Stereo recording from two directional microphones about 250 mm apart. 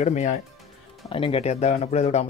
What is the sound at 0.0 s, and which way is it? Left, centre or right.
Speech, left.